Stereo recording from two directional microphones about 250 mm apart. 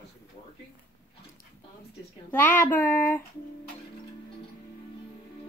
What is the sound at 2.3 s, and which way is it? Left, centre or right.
Speech, centre.